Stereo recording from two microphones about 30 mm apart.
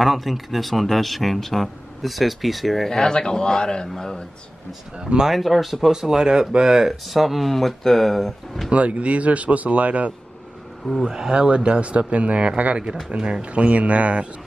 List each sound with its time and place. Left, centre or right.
0.0 s speech: centre
2.9 s speech: centre
4.9 s speech: right
5.3 s speech: centre
5.9 s speech: centre
6.9 s speech: centre
8.7 s a man's voice: right
11.1 s speech: centre
11.3 s a man's voice: right